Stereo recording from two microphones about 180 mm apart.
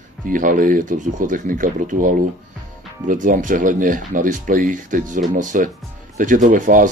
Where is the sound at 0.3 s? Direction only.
50° right (ahead or behind).